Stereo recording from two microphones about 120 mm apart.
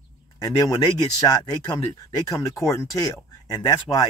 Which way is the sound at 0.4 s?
30° left (ahead or behind).